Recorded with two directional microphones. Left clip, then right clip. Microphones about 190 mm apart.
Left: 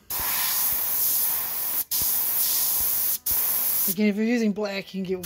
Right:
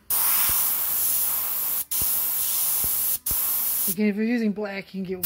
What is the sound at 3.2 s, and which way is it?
Speech, 10° left (ahead or behind).